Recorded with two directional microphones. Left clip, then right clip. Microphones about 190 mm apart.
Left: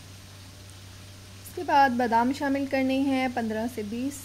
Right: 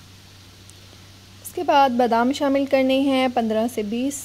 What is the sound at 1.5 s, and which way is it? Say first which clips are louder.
Speech: right 5 dB; 40° right (ahead or behind).